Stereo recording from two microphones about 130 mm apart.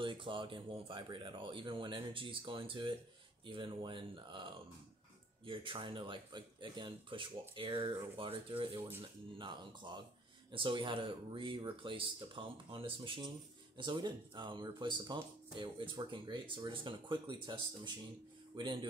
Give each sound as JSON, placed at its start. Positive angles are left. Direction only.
{"t": 0.0, "sound": "speech", "side_deg": -40}